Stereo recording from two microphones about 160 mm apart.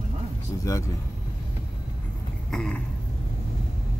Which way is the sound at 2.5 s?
5° left (ahead or behind).